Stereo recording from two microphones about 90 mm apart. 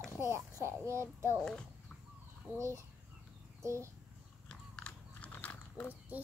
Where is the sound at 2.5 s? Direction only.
35° right (ahead or behind).